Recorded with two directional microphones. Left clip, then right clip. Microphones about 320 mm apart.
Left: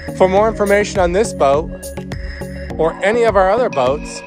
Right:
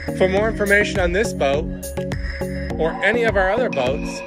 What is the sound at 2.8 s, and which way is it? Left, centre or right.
Speech, centre.